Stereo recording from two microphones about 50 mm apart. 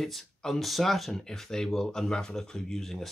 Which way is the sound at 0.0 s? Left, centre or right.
Centre.